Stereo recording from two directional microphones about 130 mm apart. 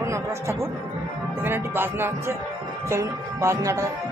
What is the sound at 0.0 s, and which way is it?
Speech, 20° right (ahead or behind).